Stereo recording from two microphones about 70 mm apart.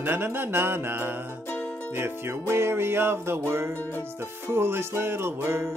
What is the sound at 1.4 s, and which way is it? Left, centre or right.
Music, left.